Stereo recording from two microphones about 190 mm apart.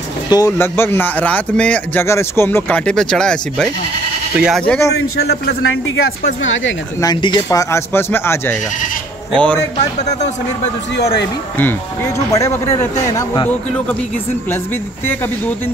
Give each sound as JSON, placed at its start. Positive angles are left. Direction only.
{"t": 0.3, "sound": "speech", "side_deg": 15}
{"t": 4.9, "sound": "a man's voice", "side_deg": 75}
{"t": 6.4, "sound": "speech", "side_deg": 90}
{"t": 7.0, "sound": "speech", "side_deg": 25}
{"t": 12.3, "sound": "speech", "side_deg": 15}